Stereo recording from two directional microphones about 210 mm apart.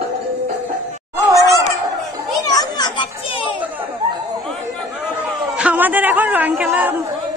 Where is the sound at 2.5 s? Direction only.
20° left (ahead or behind).